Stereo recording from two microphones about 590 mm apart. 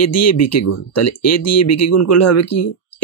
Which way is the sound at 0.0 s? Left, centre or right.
Left.